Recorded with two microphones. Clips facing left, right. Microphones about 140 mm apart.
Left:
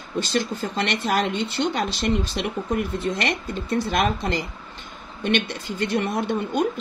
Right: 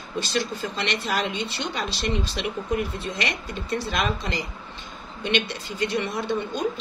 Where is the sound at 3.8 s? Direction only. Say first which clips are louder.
Left 5 dB; 50° left (ahead or behind).